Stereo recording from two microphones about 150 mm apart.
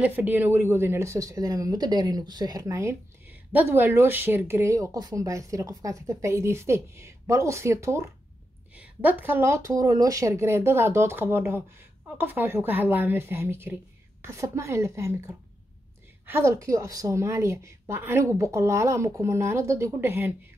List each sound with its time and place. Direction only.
0.0 s speech: 10° right (ahead or behind)